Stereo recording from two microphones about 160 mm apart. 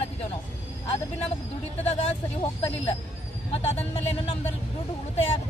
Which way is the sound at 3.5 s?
40° left (ahead or behind).